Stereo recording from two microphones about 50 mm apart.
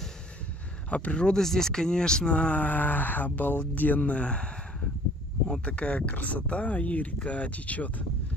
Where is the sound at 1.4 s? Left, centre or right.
Centre.